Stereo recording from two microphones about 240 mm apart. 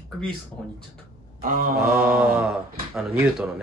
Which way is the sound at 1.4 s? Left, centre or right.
Right.